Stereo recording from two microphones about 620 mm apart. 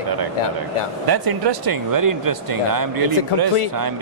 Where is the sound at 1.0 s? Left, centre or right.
Right.